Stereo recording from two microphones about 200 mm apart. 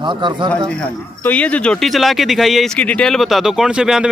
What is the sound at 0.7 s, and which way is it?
Speech, 5° left (ahead or behind).